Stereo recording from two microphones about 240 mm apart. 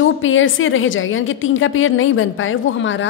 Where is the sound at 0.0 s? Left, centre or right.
Left.